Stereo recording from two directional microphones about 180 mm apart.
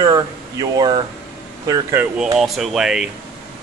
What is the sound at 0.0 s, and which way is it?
Speech, 20° right (ahead or behind).